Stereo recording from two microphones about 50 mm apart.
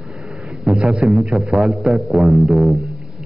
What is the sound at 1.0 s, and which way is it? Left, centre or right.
Speech, centre.